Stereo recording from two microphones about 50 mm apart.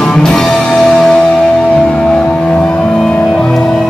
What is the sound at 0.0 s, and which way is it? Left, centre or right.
Music, centre.